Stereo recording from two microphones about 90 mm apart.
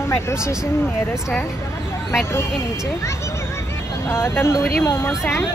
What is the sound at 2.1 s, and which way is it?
Speech, 30° left (ahead or behind).